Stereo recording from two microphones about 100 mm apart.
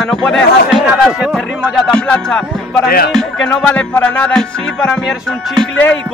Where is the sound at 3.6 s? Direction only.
15° left (ahead or behind).